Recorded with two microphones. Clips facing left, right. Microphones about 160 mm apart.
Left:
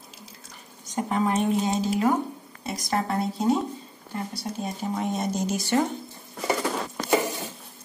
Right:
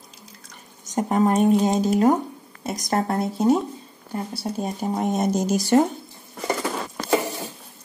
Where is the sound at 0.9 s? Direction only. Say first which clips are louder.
Right 5 dB; 45° right (ahead or behind).